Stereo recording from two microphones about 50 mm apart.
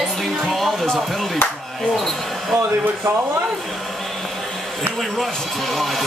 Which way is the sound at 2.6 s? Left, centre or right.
Right.